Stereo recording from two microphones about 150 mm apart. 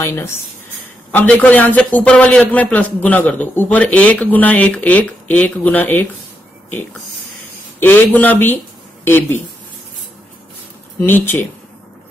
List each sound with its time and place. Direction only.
0.0 s a man's voice: 15° left (ahead or behind)
7.8 s a man's voice: 15° left (ahead or behind)
11.0 s a man's voice: 15° left (ahead or behind)